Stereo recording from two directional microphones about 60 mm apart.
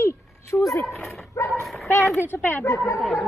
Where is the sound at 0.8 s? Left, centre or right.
Centre.